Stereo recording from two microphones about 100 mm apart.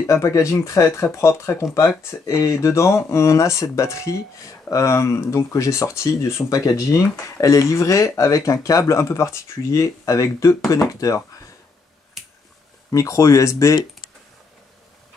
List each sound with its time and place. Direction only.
0.0 s speech: 35° left (ahead or behind)
12.9 s speech: 35° left (ahead or behind)